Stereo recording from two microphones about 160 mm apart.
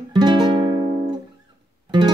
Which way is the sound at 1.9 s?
30° right (ahead or behind).